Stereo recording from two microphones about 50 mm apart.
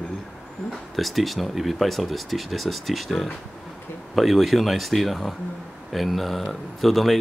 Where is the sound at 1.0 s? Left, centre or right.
Centre.